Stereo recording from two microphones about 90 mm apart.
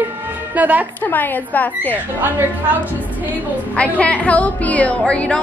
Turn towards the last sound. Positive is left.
turn(degrees=15)  # may be behind; listen again after turning